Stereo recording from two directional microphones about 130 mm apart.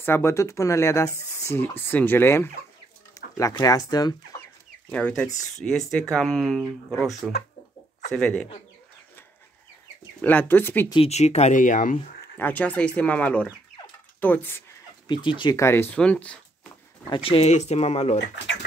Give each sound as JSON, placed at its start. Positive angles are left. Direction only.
{"t": 0.0, "sound": "speech", "side_deg": 20}
{"t": 4.9, "sound": "speech", "side_deg": 5}
{"t": 7.2, "sound": "speech", "side_deg": -5}
{"t": 8.1, "sound": "speech", "side_deg": 5}
{"t": 10.2, "sound": "speech", "side_deg": 15}
{"t": 11.1, "sound": "speech", "side_deg": 55}
{"t": 12.4, "sound": "speech", "side_deg": 15}
{"t": 15.0, "sound": "speech", "side_deg": 35}
{"t": 15.5, "sound": "speech", "side_deg": 20}
{"t": 17.1, "sound": "speech", "side_deg": 45}